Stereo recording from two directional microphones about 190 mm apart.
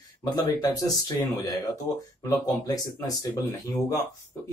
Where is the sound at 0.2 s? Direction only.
20° left (ahead or behind).